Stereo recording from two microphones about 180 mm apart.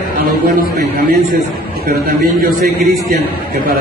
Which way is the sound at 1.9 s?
60° right (ahead or behind).